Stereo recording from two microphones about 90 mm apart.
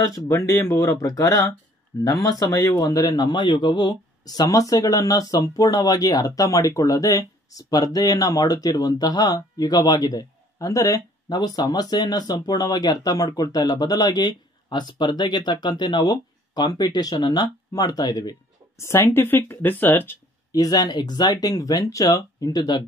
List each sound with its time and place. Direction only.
0.3 s speech: 35° left (ahead or behind)
11.2 s speech: 50° left (ahead or behind)
18.8 s speech: 30° left (ahead or behind)
20.5 s speech: 45° left (ahead or behind)